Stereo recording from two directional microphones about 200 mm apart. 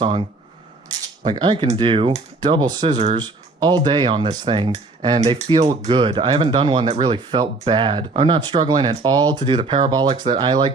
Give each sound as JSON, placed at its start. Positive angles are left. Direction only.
{"t": 0.8, "sound": "speech", "side_deg": -20}